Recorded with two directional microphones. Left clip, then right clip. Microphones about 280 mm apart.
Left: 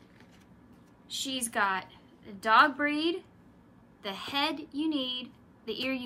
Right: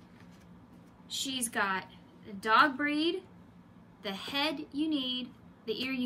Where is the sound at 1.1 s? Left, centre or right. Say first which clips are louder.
Left 1 dB; centre.